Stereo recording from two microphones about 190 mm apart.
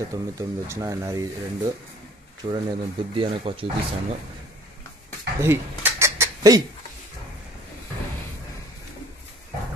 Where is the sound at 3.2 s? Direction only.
30° right (ahead or behind).